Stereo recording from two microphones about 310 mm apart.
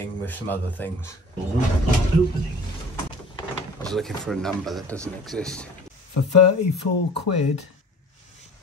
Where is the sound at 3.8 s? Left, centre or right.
Centre.